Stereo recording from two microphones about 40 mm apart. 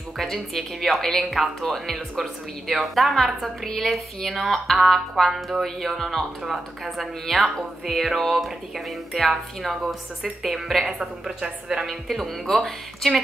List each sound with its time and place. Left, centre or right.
0.2 s speech: centre
11.0 s a woman's voice: centre
11.8 s speech: centre